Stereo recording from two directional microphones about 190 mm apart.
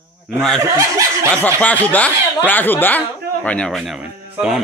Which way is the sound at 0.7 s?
15° right (ahead or behind).